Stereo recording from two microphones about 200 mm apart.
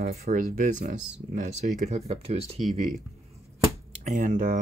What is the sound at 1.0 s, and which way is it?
Speech, 5° right (ahead or behind).